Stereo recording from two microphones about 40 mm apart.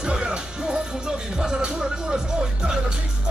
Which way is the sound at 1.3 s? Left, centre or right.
Centre.